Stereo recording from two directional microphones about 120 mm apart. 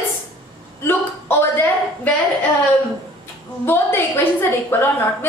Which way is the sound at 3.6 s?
20° left (ahead or behind).